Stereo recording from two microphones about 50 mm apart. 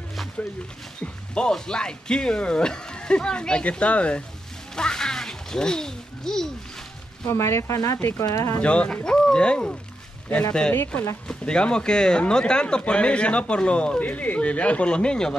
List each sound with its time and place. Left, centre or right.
1.0 s speech: centre
4.7 s a sound: centre
7.2 s speech: left
8.2 s speech: left
8.5 s speech: left
11.2 s speech: centre